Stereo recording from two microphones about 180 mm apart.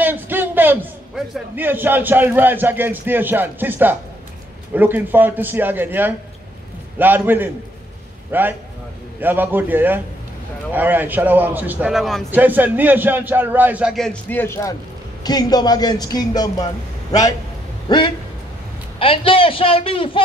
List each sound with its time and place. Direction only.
0.0 s a man's voice: 10° right (ahead or behind)
14.3 s a man's voice: 15° left (ahead or behind)
17.8 s a man's voice: 25° left (ahead or behind)